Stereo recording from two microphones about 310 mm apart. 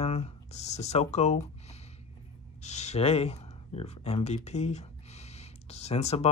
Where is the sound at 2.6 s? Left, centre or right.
Left.